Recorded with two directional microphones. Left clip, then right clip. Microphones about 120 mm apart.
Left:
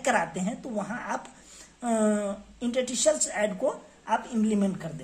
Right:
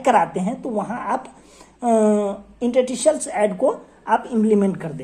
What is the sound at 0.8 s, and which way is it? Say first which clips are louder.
Speech: right 8 dB; 15° right (ahead or behind).